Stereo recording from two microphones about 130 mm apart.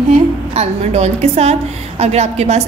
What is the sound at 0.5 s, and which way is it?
A woman's voice, 55° right (ahead or behind).